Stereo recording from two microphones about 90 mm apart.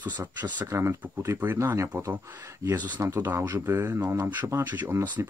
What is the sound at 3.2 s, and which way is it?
Speech, 25° right (ahead or behind).